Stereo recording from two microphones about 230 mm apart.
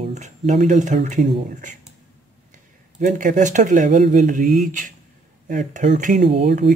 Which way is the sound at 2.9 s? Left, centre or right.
Right.